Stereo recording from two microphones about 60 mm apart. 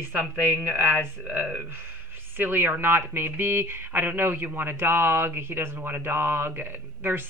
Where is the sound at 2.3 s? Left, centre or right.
Right.